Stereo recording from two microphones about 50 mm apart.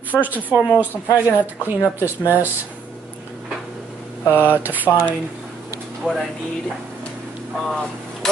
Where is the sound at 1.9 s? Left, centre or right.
Right.